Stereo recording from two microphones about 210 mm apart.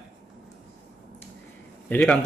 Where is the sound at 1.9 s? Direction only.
Centre (ahead or behind).